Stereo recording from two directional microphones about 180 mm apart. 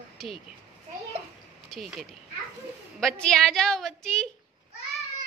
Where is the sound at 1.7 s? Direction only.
Centre (ahead or behind).